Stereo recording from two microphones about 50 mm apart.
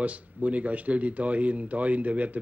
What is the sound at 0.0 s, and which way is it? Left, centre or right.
Speech, right.